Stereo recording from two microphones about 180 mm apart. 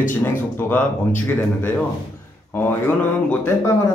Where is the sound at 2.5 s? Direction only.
10° left (ahead or behind).